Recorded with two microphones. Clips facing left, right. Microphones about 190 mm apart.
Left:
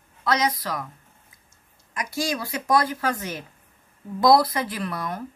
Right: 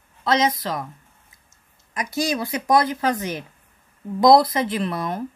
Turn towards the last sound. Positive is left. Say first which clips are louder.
# right 5 dB
turn(degrees=-25)  # may be behind; listen again after turning